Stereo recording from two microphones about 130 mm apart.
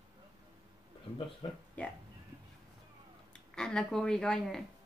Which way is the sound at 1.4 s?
40° left (ahead or behind).